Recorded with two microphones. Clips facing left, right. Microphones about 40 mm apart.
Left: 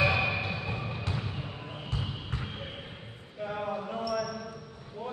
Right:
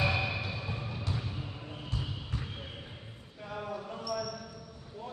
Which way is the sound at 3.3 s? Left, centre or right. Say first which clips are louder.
Left 5 dB; left.